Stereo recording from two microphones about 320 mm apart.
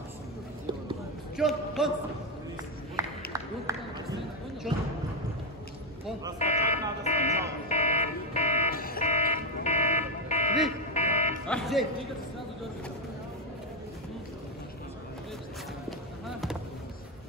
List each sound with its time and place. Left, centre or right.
1.3 s a man's voice: centre
3.0 s a sound: centre
4.7 s speech: centre
6.4 s fire alarm: left
11.0 s buzzer: left
11.4 s music: centre
16.3 s basketball bounce: centre